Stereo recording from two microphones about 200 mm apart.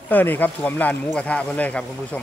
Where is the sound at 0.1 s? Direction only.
10° left (ahead or behind).